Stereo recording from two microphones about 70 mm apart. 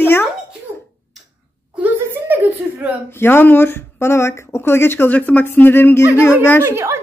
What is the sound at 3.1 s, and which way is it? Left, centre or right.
Speech, left.